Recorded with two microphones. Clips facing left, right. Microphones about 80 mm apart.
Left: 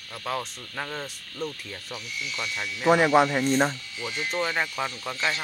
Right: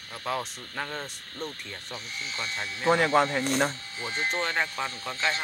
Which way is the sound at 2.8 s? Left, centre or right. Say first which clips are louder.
Left 3 dB; centre.